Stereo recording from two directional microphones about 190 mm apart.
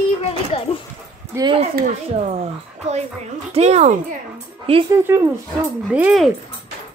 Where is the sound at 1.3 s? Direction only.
25° right (ahead or behind).